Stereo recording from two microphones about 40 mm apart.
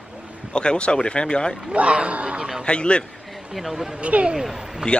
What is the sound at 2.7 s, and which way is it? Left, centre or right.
Speech, left.